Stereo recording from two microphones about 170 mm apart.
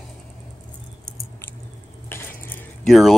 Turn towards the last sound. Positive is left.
turn(degrees=0)  # may be behind; listen again after turning